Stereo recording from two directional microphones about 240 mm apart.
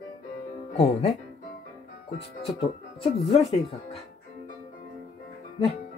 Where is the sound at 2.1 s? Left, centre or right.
Left.